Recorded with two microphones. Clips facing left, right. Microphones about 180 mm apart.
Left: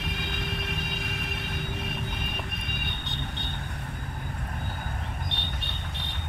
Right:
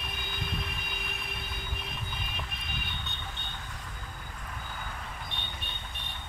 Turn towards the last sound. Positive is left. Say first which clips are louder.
# left 5 dB
turn(degrees=85)